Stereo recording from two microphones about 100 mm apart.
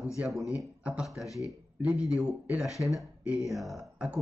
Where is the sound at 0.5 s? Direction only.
10° right (ahead or behind).